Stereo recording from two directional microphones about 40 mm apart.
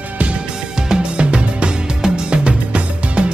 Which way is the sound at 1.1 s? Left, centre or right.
Right.